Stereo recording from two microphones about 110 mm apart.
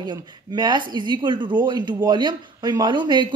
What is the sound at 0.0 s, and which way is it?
Speech, 40° right (ahead or behind).